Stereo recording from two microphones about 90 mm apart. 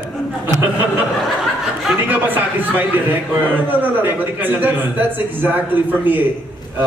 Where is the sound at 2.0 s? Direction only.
20° right (ahead or behind).